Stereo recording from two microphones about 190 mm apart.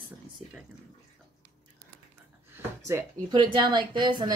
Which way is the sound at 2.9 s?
20° right (ahead or behind).